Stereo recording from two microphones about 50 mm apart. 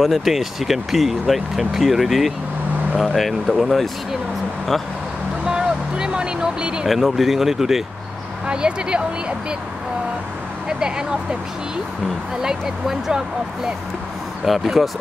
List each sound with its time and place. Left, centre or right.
0.0 s speech: centre
5.4 s vehicle: centre
6.9 s speech: centre
8.5 s speech: centre
10.7 s speech: centre
12.4 s speech: centre
14.4 s speech: centre